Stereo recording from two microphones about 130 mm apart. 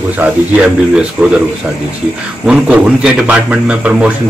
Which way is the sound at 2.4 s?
10° right (ahead or behind).